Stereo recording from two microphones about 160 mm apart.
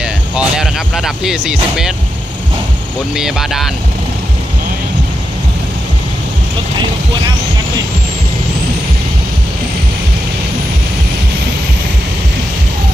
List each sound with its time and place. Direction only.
0.0 s music: 5° right (ahead or behind)
3.2 s speech: centre (ahead or behind)